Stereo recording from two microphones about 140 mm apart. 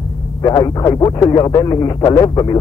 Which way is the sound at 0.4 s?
30° left (ahead or behind).